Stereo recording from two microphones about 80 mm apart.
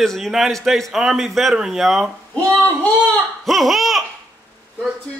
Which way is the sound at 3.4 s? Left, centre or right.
Centre.